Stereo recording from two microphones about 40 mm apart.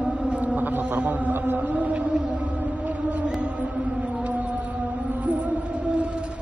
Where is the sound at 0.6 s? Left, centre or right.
Right.